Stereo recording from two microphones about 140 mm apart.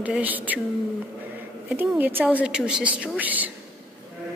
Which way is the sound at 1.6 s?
15° right (ahead or behind).